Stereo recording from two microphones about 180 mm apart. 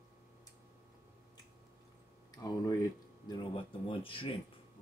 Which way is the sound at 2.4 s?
20° left (ahead or behind).